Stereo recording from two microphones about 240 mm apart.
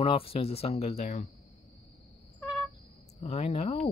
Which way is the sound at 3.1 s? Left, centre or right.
Left.